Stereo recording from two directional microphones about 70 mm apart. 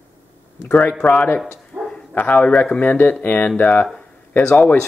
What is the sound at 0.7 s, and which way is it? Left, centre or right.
Speech, left.